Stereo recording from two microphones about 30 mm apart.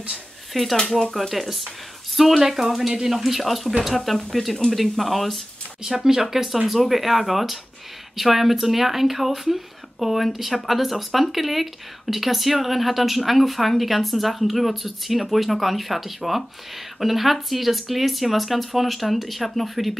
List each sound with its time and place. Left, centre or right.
0.1 s speech: centre
0.7 s speech: centre
1.1 s speech: centre
5.9 s speech: centre
6.2 s speech: centre